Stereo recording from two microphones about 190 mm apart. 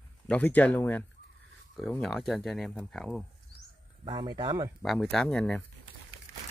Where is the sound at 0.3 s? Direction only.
10° left (ahead or behind).